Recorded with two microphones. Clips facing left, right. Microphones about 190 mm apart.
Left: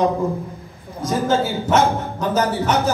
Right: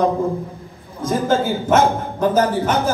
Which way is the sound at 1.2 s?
55° right (ahead or behind).